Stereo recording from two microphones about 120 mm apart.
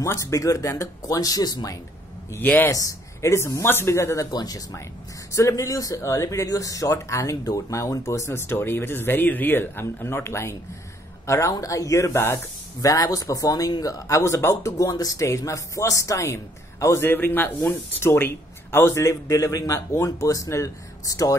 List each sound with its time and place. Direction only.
0.0 s speech: 25° left (ahead or behind)
2.3 s speech: 15° left (ahead or behind)
2.7 s speech: 25° left (ahead or behind)